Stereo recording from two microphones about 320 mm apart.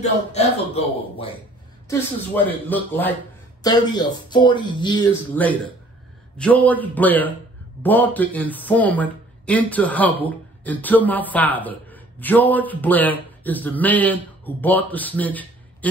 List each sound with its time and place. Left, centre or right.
0.0 s speech: centre
1.9 s speech: centre